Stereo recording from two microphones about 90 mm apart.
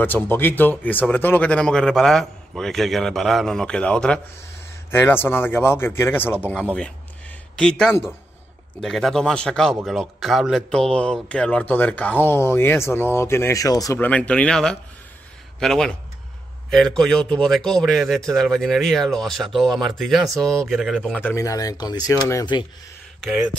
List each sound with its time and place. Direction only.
0.0 s a man's voice: 25° left (ahead or behind)
4.9 s speech: 25° left (ahead or behind)
7.5 s a man's voice: 5° left (ahead or behind); by 13.9 s 40° left (ahead or behind)
13.9 s a man's voice: 15° left (ahead or behind); by 21.1 s centre (ahead or behind)
21.1 s speech: 20° left (ahead or behind)
21.4 s speech: 40° left (ahead or behind)